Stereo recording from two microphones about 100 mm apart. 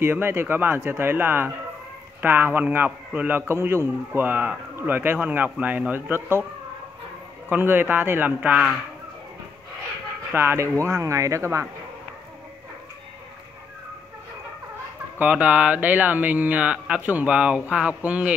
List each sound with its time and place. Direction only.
0.0 s a man's voice: 20° right (ahead or behind)
7.4 s speech: 20° right (ahead or behind)
10.3 s a man's voice: 25° right (ahead or behind)
15.1 s speech: 15° right (ahead or behind)